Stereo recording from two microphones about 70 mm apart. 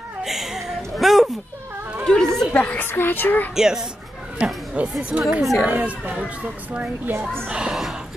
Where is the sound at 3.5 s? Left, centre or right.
Centre.